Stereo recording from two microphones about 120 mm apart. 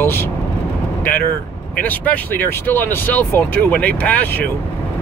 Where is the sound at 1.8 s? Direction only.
10° left (ahead or behind).